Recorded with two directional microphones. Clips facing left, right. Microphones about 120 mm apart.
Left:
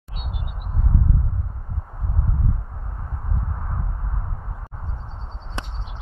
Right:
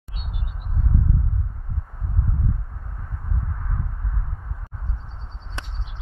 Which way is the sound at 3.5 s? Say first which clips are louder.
Left 1 dB; 30° left (ahead or behind).